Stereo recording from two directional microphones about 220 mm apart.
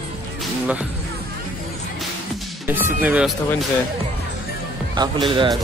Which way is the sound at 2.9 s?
5° right (ahead or behind).